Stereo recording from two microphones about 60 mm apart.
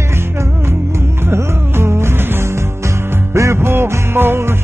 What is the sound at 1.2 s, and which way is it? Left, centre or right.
Music, right.